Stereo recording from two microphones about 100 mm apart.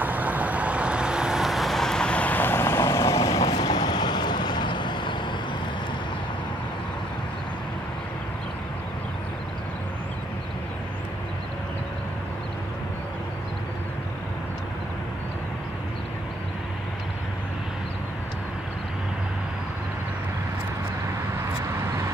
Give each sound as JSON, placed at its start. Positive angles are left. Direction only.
{"t": 0.0, "sound": "vehicle", "side_deg": -15}